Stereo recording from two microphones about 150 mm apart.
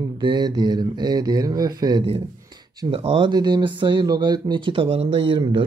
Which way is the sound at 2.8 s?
40° right (ahead or behind).